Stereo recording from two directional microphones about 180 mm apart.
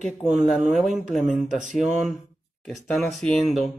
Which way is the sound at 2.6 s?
5° left (ahead or behind).